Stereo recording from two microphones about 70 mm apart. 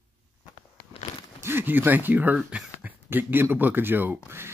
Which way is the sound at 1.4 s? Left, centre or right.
Right.